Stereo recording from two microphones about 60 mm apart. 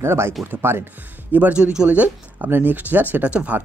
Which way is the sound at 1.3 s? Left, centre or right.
Right.